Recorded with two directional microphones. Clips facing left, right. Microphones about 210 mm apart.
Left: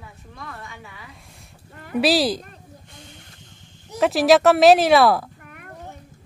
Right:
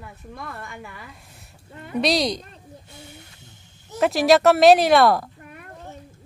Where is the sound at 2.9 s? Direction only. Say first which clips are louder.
Right 2 dB; 10° right (ahead or behind).